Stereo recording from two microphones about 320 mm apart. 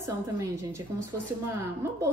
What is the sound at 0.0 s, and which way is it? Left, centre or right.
A woman's voice, centre.